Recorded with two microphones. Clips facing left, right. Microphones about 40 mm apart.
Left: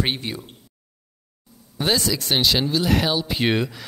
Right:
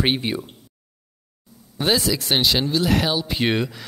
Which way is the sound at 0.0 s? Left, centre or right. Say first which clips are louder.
Right 3 dB; right.